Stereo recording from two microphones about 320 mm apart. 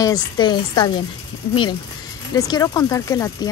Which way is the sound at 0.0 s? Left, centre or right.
Centre.